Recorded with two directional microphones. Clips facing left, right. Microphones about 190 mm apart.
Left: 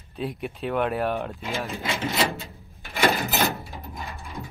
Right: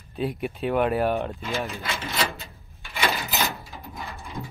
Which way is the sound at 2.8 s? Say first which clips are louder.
Left 4 dB; 45° left (ahead or behind).